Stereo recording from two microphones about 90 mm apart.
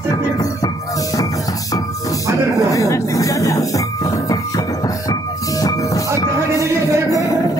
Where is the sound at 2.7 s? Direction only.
35° left (ahead or behind).